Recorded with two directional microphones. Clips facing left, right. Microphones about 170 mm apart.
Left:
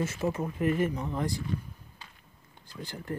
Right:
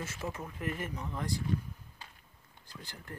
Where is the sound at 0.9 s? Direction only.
35° left (ahead or behind).